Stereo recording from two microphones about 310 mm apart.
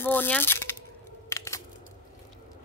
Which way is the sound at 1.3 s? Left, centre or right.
Centre.